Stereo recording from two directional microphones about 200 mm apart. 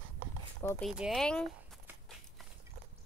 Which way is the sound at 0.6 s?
10° left (ahead or behind).